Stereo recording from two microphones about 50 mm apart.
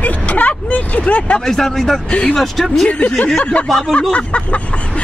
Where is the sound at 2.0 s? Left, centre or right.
Left.